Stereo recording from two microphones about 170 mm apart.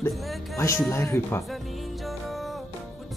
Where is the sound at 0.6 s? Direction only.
15° left (ahead or behind).